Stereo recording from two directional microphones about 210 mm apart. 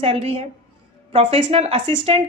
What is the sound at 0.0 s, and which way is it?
Speech, 30° right (ahead or behind).